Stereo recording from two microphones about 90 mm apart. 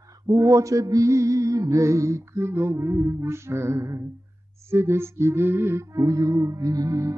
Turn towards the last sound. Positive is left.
turn(degrees=-40)  # may be behind; listen again after turning